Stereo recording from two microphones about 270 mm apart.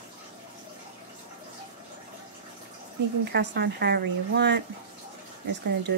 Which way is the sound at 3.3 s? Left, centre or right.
Right.